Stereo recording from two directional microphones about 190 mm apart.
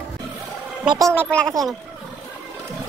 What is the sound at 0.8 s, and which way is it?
Speech, 20° right (ahead or behind).